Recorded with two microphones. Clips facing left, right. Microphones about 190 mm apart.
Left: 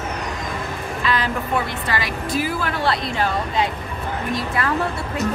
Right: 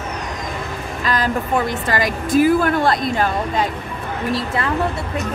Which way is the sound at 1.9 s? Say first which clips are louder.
Right 5 dB; 45° right (ahead or behind).